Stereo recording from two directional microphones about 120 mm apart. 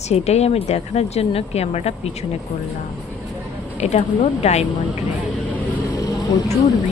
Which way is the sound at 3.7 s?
70° left (ahead or behind).